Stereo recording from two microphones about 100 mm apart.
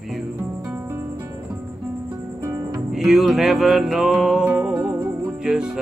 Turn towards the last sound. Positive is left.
turn(degrees=-5)  # may be behind; listen again after turning